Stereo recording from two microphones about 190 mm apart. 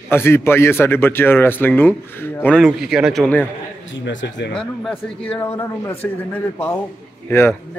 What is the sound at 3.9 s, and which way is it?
Speech, 75° left (ahead or behind).